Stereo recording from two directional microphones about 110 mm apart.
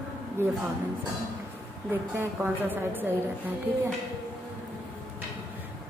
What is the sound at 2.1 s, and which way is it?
Speech, 15° right (ahead or behind).